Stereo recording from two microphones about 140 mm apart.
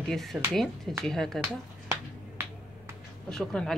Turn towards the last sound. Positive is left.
turn(degrees=5)  # may be behind; listen again after turning